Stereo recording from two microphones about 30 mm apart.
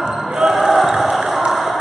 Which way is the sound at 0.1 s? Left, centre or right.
Centre.